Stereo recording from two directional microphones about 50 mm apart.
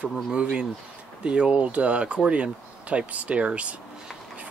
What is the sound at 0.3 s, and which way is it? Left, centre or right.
Speech, centre.